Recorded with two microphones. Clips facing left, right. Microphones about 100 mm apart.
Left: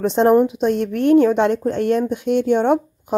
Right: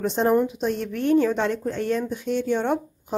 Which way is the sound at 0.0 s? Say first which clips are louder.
Left 6 dB; 70° left (ahead or behind).